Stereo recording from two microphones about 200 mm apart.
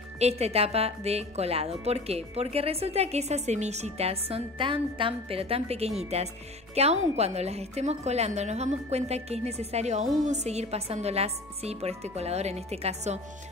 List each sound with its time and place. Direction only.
0.2 s a woman's voice: 30° right (ahead or behind)